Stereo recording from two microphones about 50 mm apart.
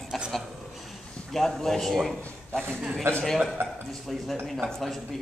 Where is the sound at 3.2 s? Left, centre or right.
Centre.